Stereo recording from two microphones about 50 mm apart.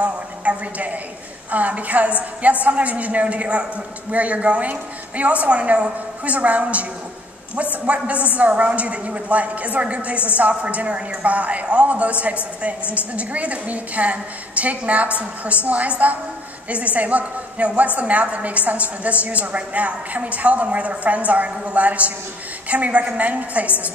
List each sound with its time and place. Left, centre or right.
0.0 s a woman's voice: right